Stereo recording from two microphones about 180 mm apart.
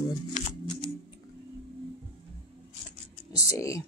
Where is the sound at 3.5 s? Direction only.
15° left (ahead or behind).